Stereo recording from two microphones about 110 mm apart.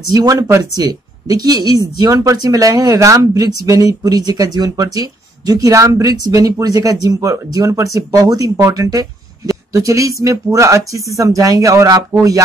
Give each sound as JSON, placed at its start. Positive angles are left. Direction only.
{"t": 0.1, "sound": "speech", "side_deg": -35}